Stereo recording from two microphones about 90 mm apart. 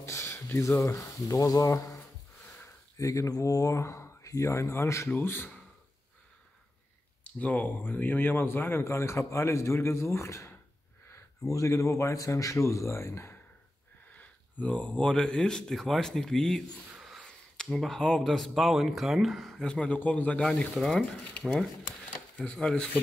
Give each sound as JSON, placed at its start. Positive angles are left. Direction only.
{"t": 0.0, "sound": "speech", "side_deg": 30}
{"t": 7.3, "sound": "speech", "side_deg": 15}
{"t": 14.1, "sound": "speech", "side_deg": 15}
{"t": 16.9, "sound": "a sound", "side_deg": -5}
{"t": 17.2, "sound": "speech", "side_deg": 5}
{"t": 19.7, "sound": "speech", "side_deg": 15}